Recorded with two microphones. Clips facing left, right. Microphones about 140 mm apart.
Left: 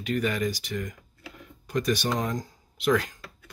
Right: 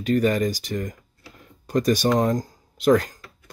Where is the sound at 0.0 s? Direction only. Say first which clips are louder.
Right 7 dB; 40° right (ahead or behind).